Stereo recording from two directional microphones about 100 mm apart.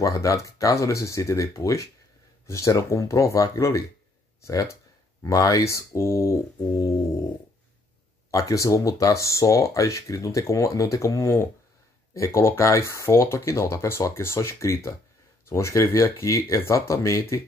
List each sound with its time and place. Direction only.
0.0 s speech: 35° left (ahead or behind)
5.2 s speech: 35° left (ahead or behind)
8.3 s speech: 35° left (ahead or behind)